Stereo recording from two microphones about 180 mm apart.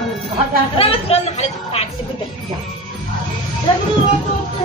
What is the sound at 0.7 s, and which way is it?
A woman's voice, 35° left (ahead or behind).